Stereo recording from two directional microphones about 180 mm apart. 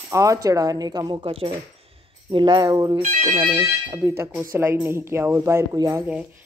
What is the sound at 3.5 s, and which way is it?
Speech, 15° right (ahead or behind).